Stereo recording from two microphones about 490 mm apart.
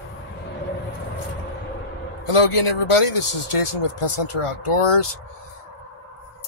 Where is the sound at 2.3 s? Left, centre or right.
Left.